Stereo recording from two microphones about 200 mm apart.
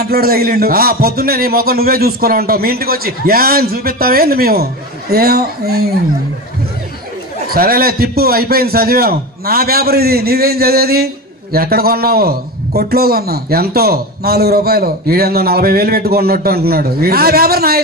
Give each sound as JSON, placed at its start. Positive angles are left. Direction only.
{"t": 0.0, "sound": "a man's voice", "side_deg": -50}
{"t": 7.4, "sound": "a man's voice", "side_deg": -45}